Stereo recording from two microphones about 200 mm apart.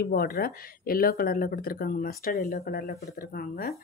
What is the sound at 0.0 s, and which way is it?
Speech, 50° left (ahead or behind).